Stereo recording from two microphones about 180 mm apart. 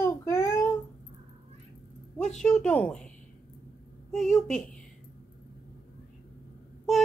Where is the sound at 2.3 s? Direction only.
5° left (ahead or behind).